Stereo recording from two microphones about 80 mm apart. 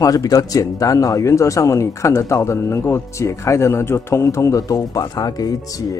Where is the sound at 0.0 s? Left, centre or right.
Left.